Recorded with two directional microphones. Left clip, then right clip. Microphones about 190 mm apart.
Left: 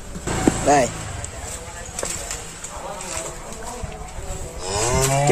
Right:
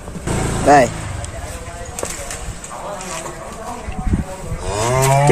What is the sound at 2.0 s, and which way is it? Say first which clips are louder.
Clip-clop: right 2 dB; 15° right (ahead or behind).